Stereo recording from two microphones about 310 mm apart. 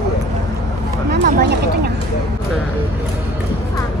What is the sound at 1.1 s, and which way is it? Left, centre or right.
Speech, right.